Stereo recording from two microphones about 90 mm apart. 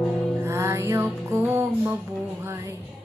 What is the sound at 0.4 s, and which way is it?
Music, 30° right (ahead or behind).